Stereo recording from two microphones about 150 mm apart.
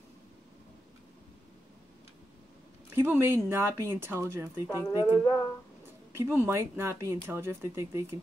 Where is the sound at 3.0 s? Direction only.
15° right (ahead or behind).